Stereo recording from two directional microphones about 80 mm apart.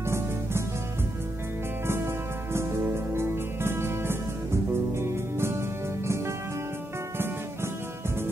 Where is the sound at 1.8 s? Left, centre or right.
Right.